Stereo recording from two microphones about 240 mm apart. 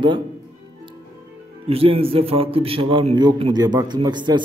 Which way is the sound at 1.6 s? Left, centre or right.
Right.